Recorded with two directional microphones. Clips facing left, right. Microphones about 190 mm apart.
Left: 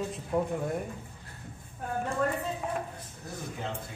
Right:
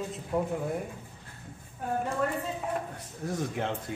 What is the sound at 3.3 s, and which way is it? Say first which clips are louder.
Speech: right 5 dB; 75° right (ahead or behind).